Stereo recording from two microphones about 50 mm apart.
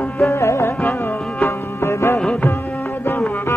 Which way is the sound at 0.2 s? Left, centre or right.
Left.